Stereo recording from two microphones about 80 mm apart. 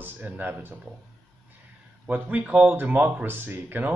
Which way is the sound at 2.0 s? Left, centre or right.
Centre.